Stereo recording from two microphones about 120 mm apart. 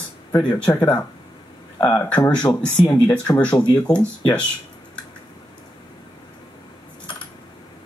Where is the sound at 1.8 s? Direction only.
35° left (ahead or behind).